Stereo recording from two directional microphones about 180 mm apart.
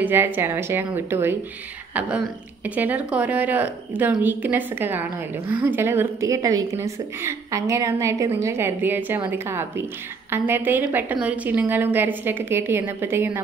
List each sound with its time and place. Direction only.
0.0 s a woman's voice: 10° right (ahead or behind)